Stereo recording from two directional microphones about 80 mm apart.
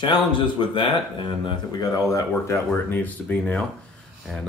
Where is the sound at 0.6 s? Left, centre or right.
Left.